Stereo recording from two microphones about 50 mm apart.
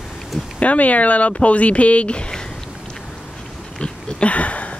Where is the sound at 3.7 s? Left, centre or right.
Centre.